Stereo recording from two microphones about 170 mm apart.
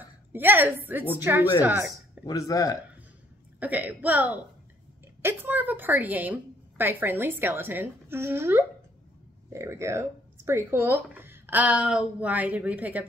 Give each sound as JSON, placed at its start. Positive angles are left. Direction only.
{"t": 0.3, "sound": "speech", "side_deg": -10}
{"t": 2.2, "sound": "speech", "side_deg": 20}
{"t": 3.5, "sound": "speech", "side_deg": -10}